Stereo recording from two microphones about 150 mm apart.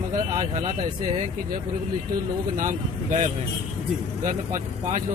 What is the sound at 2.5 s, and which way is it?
Speech, 60° right (ahead or behind).